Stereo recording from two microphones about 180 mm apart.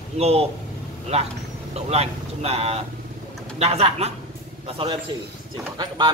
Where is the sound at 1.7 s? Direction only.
35° right (ahead or behind).